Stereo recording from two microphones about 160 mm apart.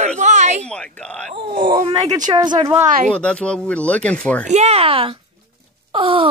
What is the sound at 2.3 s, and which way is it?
Speech, 25° right (ahead or behind).